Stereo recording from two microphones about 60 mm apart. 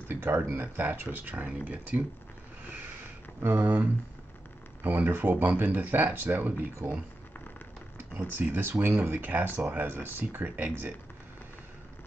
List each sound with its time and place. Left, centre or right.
0.1 s speech: right
3.4 s speech: right
8.1 s speech: right
9.8 s speech: right
10.4 s speech: right